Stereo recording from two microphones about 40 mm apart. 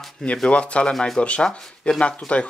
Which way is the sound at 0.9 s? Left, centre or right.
Centre.